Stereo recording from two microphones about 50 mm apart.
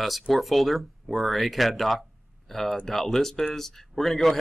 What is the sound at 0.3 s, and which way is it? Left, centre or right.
Speech, centre.